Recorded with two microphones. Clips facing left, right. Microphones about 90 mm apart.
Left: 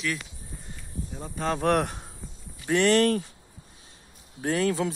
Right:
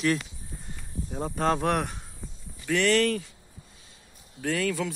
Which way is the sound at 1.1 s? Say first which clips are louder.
Right 4 dB; 40° right (ahead or behind).